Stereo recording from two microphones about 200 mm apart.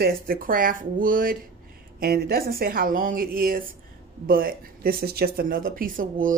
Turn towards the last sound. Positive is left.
turn(degrees=-40)  # may be behind; listen again after turning